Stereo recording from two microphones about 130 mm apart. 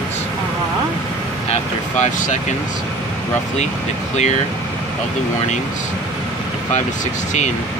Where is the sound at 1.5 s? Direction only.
65° left (ahead or behind).